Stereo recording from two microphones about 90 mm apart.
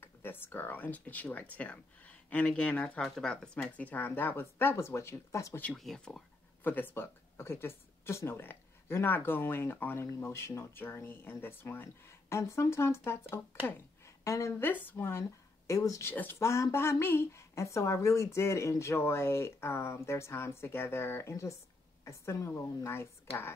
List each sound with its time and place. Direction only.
0.0 s speech: 25° left (ahead or behind)
5.6 s speech: 5° left (ahead or behind)
6.6 s a woman's voice: 20° left (ahead or behind)
14.6 s speech: 20° left (ahead or behind); by 16.1 s 35° left (ahead or behind)
16.1 s a woman's voice: 25° left (ahead or behind)